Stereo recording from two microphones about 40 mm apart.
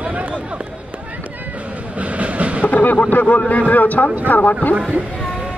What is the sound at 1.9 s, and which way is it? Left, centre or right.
Train, right.